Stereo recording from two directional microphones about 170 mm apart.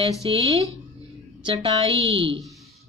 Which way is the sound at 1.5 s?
35° right (ahead or behind).